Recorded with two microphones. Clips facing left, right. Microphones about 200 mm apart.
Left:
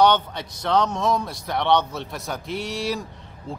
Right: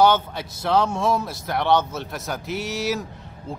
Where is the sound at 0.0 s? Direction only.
5° right (ahead or behind).